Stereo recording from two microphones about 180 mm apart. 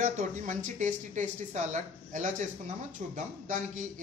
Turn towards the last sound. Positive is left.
turn(degrees=-45)  # may be behind; listen again after turning